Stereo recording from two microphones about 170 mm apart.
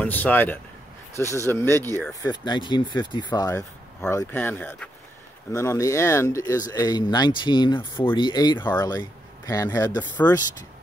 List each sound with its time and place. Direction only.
0.0 s speech: 10° left (ahead or behind)
2.2 s speech: 25° left (ahead or behind)
8.6 s speech: 15° left (ahead or behind)